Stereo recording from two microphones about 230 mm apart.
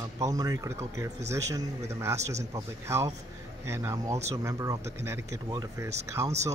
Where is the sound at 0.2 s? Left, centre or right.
Centre.